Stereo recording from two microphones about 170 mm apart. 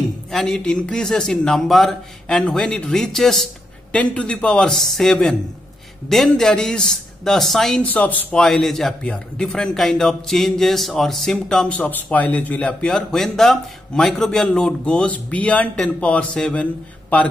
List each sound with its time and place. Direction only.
0.3 s a man's voice: centre (ahead or behind)